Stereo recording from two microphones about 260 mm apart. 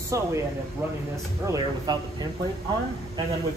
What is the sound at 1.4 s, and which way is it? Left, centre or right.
Speech, centre.